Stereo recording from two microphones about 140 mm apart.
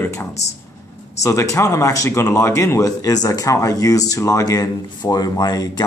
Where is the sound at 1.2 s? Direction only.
20° left (ahead or behind).